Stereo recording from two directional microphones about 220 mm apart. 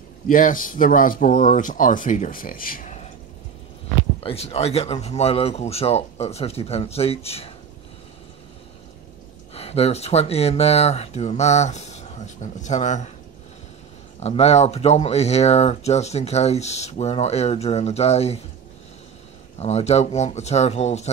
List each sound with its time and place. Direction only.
0.3 s speech: 40° left (ahead or behind)
4.2 s speech: 25° left (ahead or behind)
9.5 s speech: 25° left (ahead or behind)
14.2 s speech: 30° left (ahead or behind)
19.6 s speech: 30° left (ahead or behind)